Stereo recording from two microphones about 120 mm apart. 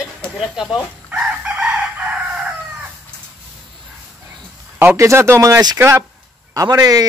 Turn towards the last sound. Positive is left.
turn(degrees=-30)  # may be behind; listen again after turning